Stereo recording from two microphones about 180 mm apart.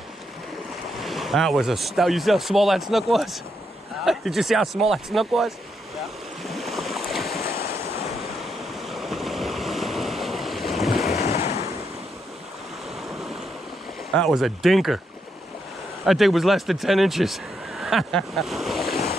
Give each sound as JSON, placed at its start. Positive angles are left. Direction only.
{"t": 1.0, "sound": "speech", "side_deg": 0}
{"t": 6.4, "sound": "waves", "side_deg": 0}
{"t": 7.6, "sound": "waves", "side_deg": 35}
{"t": 8.1, "sound": "waves", "side_deg": 0}
{"t": 11.1, "sound": "waves", "side_deg": 35}
{"t": 11.5, "sound": "waves", "side_deg": -15}
{"t": 13.0, "sound": "waves", "side_deg": 0}
{"t": 14.1, "sound": "speech", "side_deg": 0}
{"t": 16.1, "sound": "speech", "side_deg": 0}